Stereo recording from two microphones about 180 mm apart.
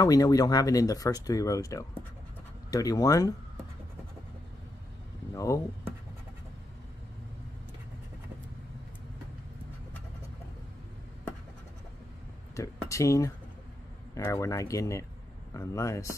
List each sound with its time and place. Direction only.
0.0 s speech: 20° left (ahead or behind)
5.3 s speech: 15° left (ahead or behind)
12.5 s a sound: 15° left (ahead or behind)
14.1 s speech: 15° left (ahead or behind)